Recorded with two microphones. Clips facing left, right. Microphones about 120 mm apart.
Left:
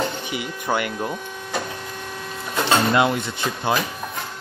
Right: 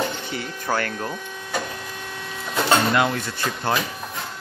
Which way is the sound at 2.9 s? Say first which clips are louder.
Left 2 dB; 25° left (ahead or behind).